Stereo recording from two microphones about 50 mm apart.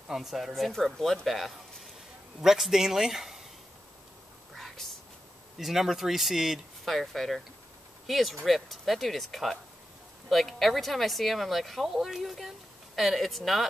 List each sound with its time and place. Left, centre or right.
0.1 s a man's voice: centre
4.6 s whispering: centre
5.6 s speech: centre